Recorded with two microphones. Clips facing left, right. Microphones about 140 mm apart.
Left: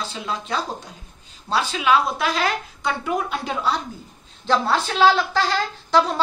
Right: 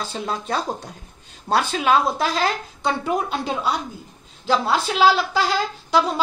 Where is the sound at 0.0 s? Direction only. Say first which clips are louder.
Right 2 dB; 45° right (ahead or behind).